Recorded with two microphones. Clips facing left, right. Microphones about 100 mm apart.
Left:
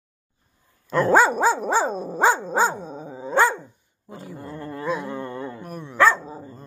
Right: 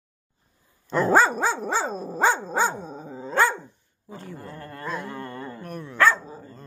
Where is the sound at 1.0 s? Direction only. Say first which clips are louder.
Left 2 dB; centre (ahead or behind).